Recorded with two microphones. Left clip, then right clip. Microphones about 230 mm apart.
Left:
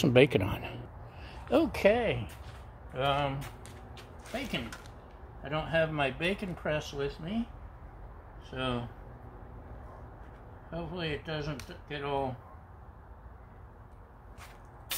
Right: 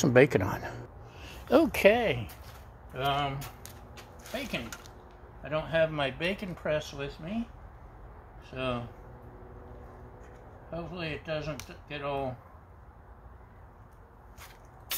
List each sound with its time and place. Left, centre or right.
0.3 s speech: centre
1.5 s speech: right
2.9 s a sound: right
5.4 s a man's voice: centre
8.5 s speech: centre
10.7 s a man's voice: centre